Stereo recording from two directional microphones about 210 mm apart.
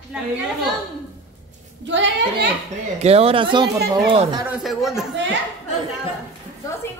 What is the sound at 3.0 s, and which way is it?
Speech, 30° right (ahead or behind).